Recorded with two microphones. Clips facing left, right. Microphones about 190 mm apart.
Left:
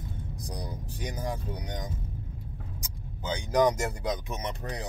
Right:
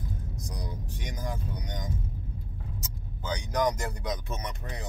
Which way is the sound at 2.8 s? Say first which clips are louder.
Right 1 dB; 20° left (ahead or behind).